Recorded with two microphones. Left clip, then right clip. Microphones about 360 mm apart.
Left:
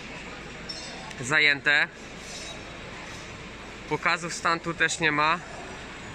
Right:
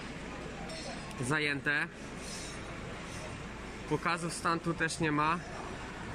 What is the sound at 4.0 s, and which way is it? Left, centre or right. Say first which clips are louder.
Speech: left 9 dB; centre.